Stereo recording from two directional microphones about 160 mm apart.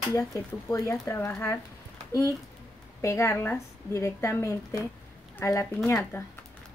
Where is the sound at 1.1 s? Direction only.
15° left (ahead or behind).